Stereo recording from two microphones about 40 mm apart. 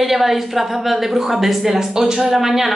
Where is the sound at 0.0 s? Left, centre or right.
Centre.